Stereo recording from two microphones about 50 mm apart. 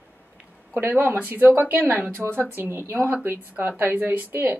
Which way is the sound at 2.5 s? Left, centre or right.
Right.